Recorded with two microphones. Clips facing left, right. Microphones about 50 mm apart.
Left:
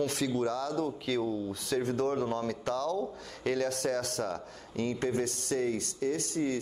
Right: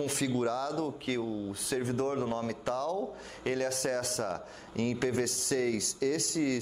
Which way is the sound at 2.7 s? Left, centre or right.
Left.